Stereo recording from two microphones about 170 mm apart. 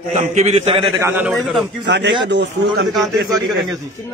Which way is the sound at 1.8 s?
90° right.